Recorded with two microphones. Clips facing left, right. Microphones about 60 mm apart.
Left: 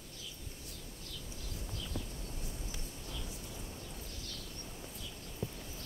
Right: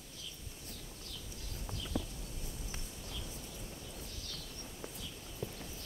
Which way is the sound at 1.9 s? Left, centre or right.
Right.